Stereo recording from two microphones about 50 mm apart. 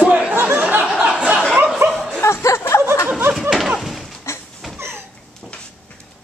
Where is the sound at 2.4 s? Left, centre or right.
Left.